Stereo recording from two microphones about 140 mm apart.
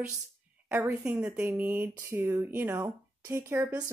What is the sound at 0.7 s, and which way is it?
A woman's voice, 20° right (ahead or behind).